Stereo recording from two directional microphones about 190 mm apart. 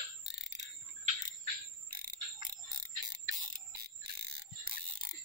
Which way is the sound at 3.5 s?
55° right (ahead or behind).